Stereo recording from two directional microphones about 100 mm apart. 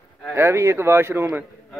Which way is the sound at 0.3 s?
25° right (ahead or behind).